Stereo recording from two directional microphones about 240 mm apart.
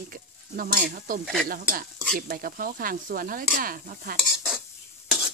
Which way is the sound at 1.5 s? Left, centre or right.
Right.